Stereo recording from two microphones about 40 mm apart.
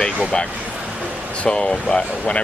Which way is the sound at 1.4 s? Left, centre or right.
Left.